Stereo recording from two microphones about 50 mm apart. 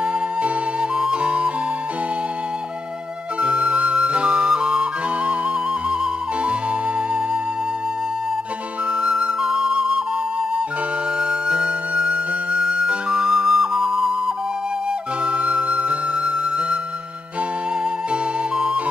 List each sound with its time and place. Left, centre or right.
0.0 s music: right
1.0 s flute: right
3.3 s music: right
9.0 s music: centre
11.1 s flute: centre
15.2 s music: right
18.1 s music: centre